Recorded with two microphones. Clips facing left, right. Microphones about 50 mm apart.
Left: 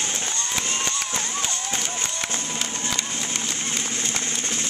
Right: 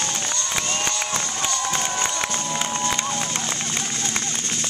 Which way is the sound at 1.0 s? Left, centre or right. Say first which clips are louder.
Right 2 dB; right.